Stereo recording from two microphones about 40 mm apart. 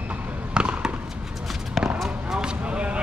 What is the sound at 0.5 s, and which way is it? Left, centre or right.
Basketball bounce, right.